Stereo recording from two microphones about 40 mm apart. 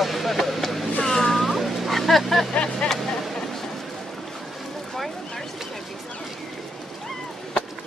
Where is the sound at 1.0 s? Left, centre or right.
Centre.